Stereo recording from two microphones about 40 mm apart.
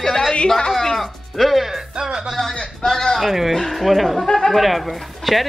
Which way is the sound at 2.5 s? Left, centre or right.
Centre.